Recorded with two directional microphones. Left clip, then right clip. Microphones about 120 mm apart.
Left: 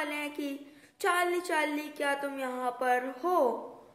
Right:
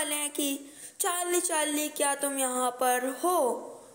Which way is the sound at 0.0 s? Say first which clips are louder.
Right 2 dB; 40° right (ahead or behind).